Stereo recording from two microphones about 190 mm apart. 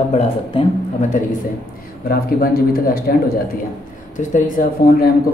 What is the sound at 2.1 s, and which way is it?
A man's voice, 55° left (ahead or behind).